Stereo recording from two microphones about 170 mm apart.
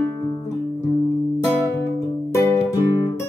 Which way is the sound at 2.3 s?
15° left (ahead or behind).